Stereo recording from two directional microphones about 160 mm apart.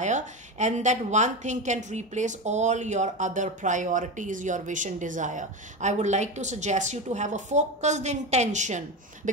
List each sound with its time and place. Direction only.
0.0 s a woman's voice: 50° right (ahead or behind)